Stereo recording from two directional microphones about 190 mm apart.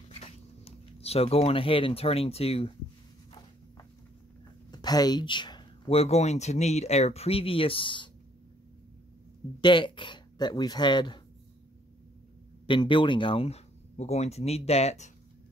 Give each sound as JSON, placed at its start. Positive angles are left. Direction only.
{"t": 0.2, "sound": "speech", "side_deg": 30}
{"t": 4.6, "sound": "speech", "side_deg": 20}
{"t": 9.6, "sound": "speech", "side_deg": 25}
{"t": 12.6, "sound": "speech", "side_deg": 25}